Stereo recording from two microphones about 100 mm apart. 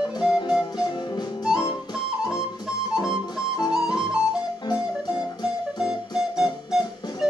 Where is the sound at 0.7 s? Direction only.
45° left (ahead or behind).